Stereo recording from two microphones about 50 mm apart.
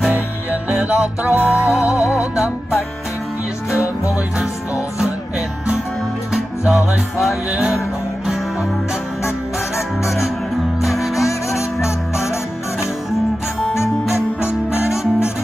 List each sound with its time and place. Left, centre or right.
0.1 s music: right
1.3 s music: left
6.7 s music: centre
10.8 s music: centre
14.1 s music: right